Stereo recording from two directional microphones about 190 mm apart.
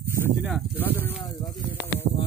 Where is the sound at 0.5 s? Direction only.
10° left (ahead or behind).